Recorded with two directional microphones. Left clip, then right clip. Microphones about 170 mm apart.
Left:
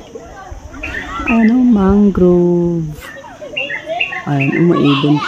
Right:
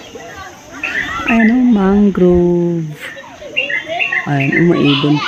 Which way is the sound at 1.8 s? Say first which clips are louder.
Even; centre (ahead or behind).